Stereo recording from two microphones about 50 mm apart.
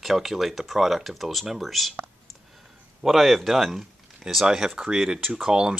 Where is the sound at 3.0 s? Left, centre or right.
Centre.